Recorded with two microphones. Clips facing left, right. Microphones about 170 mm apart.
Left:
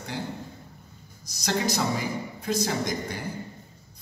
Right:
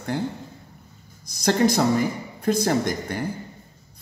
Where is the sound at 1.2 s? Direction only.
55° right (ahead or behind).